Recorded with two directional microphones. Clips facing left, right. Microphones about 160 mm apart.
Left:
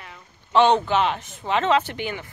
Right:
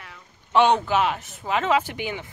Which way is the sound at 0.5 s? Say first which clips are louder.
Left 1 dB; 10° right (ahead or behind).